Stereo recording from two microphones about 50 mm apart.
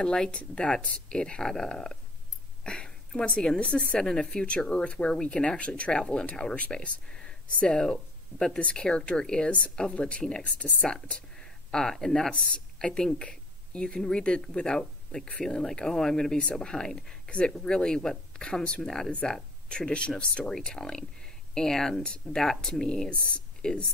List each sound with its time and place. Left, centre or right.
0.0 s a woman's voice: centre
2.6 s a sound: centre
3.1 s a woman's voice: centre
7.1 s a sound: centre
7.6 s a woman's voice: centre
11.3 s a woman's voice: centre